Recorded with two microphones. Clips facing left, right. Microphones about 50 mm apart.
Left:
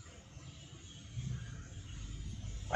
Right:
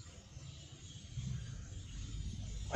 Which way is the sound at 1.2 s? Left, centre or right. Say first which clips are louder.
Left 1 dB; left.